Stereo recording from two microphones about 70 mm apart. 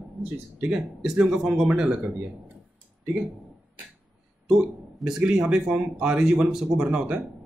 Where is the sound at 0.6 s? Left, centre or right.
Centre.